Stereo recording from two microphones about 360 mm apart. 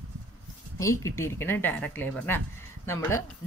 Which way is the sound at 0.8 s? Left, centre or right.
Centre.